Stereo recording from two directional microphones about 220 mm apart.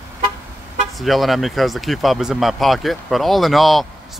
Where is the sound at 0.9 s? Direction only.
Centre (ahead or behind).